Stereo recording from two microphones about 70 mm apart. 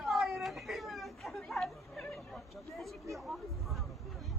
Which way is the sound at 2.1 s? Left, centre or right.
Centre.